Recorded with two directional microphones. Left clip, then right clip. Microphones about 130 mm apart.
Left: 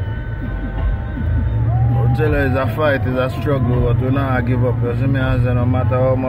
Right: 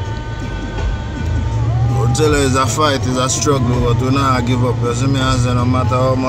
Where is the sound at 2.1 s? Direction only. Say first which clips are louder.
Right 4 dB; 25° right (ahead or behind).